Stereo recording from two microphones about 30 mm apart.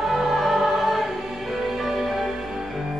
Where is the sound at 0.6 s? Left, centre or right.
Centre.